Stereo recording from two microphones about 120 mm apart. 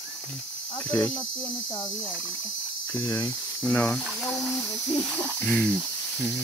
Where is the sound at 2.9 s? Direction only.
35° left (ahead or behind).